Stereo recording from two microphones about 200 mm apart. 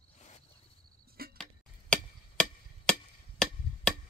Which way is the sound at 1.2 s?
50° right (ahead or behind).